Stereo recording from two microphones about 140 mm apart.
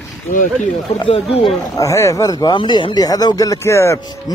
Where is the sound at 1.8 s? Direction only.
20° left (ahead or behind).